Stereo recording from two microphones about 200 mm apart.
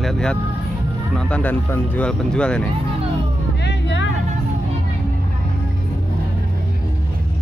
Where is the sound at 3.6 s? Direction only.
65° left (ahead or behind).